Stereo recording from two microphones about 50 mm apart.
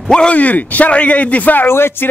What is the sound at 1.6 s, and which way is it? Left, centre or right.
Speech, left.